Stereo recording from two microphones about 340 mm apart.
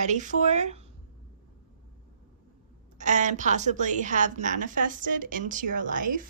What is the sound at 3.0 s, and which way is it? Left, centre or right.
A woman's voice, right.